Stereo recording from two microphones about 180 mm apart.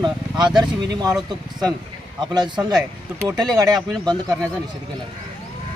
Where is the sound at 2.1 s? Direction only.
25° right (ahead or behind).